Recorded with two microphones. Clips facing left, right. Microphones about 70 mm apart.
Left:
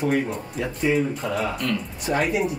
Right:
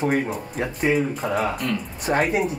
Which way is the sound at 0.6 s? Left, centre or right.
Right.